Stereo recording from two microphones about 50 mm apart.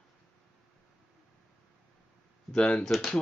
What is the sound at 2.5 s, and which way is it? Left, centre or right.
Speech, centre.